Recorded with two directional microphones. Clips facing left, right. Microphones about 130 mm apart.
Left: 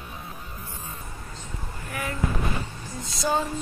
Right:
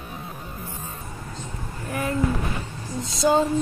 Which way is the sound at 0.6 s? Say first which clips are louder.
Right 4 dB; 15° right (ahead or behind).